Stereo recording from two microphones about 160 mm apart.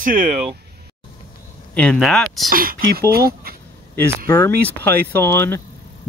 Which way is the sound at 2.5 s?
65° right (ahead or behind).